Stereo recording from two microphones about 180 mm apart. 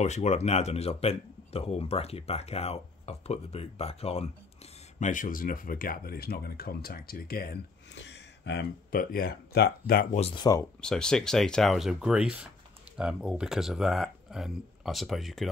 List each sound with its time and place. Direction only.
0.0 s speech: 40° left (ahead or behind)
4.9 s speech: 45° left (ahead or behind); by 10.0 s 60° left (ahead or behind)
10.1 s speech: 35° left (ahead or behind)
10.4 s speech: 20° left (ahead or behind)
10.8 s speech: 5° left (ahead or behind)